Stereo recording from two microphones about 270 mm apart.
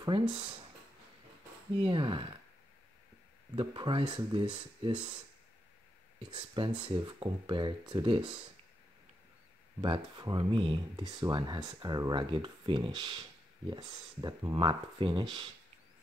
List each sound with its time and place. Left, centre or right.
0.0 s speech: centre
1.8 s speech: centre
3.5 s speech: centre
6.3 s speech: centre
9.8 s speech: centre